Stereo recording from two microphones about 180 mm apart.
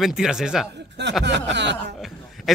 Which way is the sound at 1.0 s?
70° right (ahead or behind).